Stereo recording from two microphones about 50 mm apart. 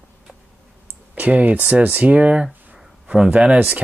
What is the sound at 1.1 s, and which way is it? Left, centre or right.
Speech, right.